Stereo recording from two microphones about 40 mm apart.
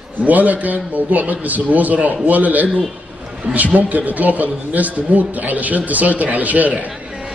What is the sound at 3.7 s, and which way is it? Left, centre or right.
A man's voice, right.